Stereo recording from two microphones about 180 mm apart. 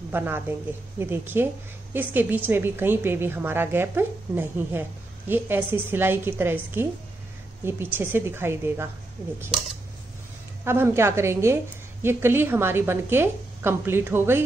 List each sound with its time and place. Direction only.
0.1 s a woman's voice: 10° right (ahead or behind)
10.6 s a woman's voice: 15° right (ahead or behind)